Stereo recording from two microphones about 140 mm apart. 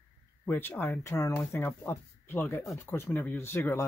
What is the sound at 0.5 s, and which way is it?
Speech, 15° left (ahead or behind).